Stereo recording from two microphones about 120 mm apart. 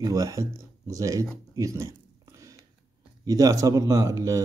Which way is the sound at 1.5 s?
25° right (ahead or behind).